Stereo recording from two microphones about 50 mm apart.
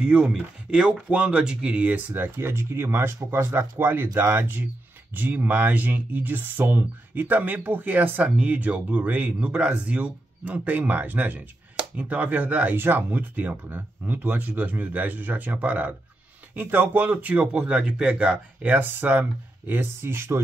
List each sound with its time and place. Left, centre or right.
0.0 s speech: right
2.1 s speech: right